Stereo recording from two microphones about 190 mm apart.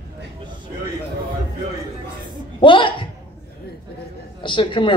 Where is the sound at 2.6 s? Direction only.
25° left (ahead or behind).